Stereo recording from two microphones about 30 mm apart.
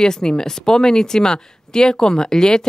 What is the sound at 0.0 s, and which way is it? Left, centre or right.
Speech, left.